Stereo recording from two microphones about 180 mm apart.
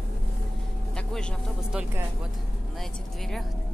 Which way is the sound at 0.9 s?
5° left (ahead or behind).